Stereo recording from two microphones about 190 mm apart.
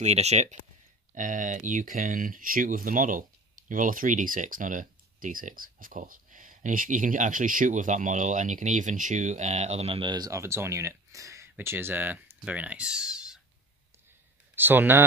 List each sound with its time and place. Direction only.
0.0 s speech: 35° right (ahead or behind); by 13.4 s 5° right (ahead or behind)
14.5 s speech: 10° right (ahead or behind)